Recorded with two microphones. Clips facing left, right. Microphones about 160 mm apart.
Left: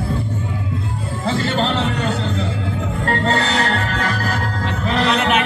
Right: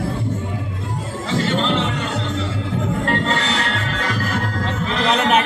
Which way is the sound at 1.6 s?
35° left (ahead or behind).